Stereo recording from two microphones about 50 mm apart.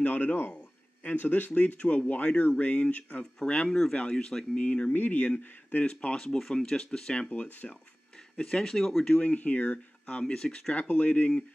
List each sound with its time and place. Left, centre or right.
0.0 s speech: left
3.6 s speech: centre
3.9 s speech: left
4.9 s speech: left
5.9 s speech: left
7.2 s speech: left
8.4 s speech: centre
8.7 s speech: centre
9.2 s speech: left; by 10.7 s centre
10.7 s speech: left